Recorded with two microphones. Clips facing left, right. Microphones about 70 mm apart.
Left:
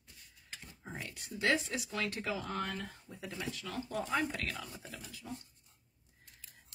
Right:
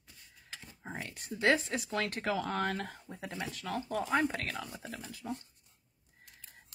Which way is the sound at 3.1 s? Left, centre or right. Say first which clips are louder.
Right 2 dB; right.